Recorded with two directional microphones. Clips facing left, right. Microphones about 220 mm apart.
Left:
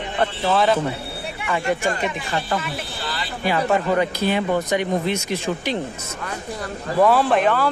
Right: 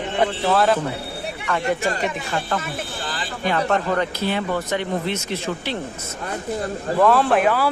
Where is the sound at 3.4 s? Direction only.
5° left (ahead or behind).